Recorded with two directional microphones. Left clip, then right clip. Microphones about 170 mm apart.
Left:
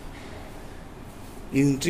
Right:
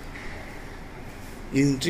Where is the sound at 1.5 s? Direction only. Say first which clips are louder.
Even; 15° left (ahead or behind).